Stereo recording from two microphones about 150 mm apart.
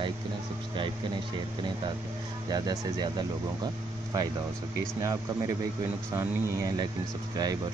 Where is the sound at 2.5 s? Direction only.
25° right (ahead or behind).